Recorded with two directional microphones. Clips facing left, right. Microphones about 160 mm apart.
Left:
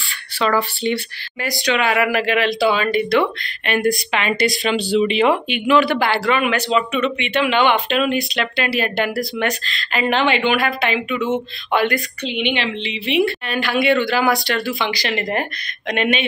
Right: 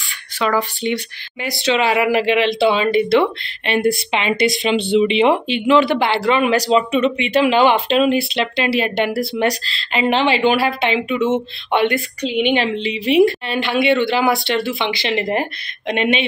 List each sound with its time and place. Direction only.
0.4 s speech: 10° right (ahead or behind)
1.6 s speech: 30° right (ahead or behind)
12.3 s a woman's voice: 45° right (ahead or behind)
13.5 s speech: 25° right (ahead or behind)